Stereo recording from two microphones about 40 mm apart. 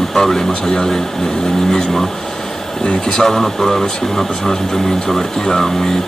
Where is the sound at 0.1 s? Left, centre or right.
Centre.